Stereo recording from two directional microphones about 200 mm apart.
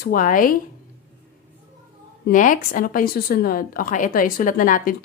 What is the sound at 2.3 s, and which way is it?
A woman's voice, 40° left (ahead or behind).